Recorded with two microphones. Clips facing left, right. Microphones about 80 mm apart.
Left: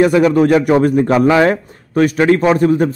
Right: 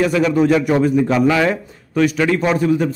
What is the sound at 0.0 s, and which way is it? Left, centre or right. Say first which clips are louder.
A man's voice: left 4 dB; left.